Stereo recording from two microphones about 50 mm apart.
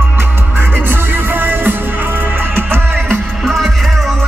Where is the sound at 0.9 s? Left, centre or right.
Right.